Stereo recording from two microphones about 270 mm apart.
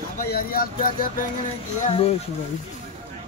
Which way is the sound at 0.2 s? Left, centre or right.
Left.